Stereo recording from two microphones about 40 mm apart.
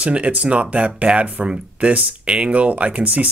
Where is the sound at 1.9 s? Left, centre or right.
Right.